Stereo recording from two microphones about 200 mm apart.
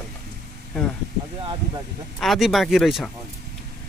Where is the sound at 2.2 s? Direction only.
Centre (ahead or behind).